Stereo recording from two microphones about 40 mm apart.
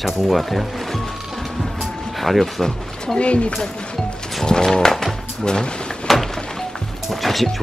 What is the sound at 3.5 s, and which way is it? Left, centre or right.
Music, centre.